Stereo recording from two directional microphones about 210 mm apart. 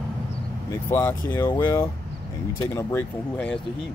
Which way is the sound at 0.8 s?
10° left (ahead or behind).